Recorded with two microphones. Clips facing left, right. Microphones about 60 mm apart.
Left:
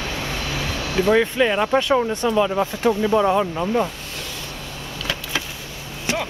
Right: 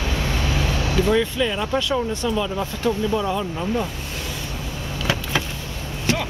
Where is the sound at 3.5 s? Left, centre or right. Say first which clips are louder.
Left 3 dB; centre.